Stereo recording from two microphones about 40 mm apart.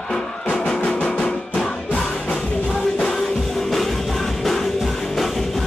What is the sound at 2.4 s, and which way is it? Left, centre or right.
Music, left.